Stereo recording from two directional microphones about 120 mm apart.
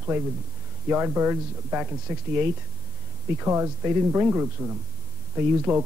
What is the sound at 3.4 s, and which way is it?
Speech, 20° right (ahead or behind).